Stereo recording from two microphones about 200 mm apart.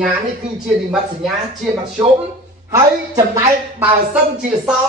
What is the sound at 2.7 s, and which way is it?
A woman's voice, 15° right (ahead or behind).